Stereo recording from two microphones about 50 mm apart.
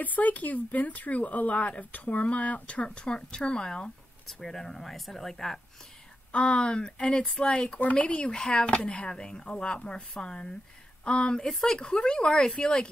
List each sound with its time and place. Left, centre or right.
0.0 s speech: left; by 5.6 s centre
6.3 s speech: left